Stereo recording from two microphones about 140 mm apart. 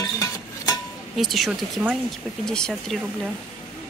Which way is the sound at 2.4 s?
5° left (ahead or behind).